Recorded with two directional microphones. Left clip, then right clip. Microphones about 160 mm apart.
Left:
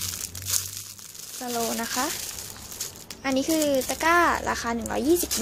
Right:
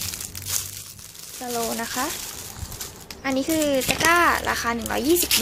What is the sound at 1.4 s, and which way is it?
A child's voice, 15° left (ahead or behind).